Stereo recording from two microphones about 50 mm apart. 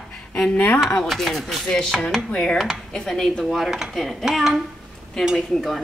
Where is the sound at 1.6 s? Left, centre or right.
Centre.